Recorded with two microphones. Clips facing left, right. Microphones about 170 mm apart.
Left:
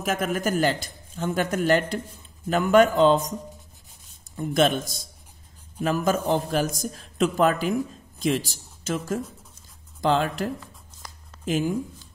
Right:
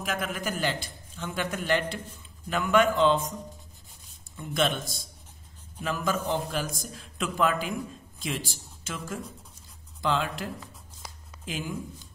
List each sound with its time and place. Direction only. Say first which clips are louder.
0.0 s a man's voice: left 6 dB; 45° left (ahead or behind)
4.4 s a man's voice: left 6 dB; 45° left (ahead or behind)